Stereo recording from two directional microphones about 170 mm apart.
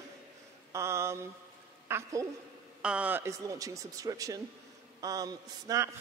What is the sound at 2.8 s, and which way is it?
Speech, 5° right (ahead or behind).